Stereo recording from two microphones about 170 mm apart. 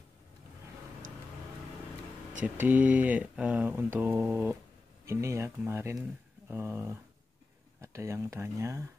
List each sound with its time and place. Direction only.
2.4 s speech: 10° right (ahead or behind)